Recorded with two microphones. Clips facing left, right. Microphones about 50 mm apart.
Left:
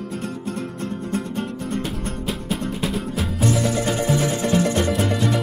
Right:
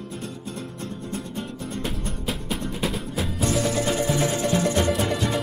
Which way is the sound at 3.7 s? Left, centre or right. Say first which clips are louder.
Left 2 dB; left.